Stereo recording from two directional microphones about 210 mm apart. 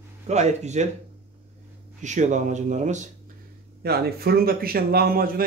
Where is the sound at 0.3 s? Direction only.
35° right (ahead or behind).